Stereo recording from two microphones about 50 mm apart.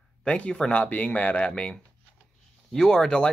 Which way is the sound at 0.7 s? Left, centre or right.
Left.